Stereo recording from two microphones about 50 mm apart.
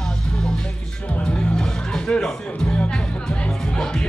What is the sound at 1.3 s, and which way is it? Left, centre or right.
Music, centre.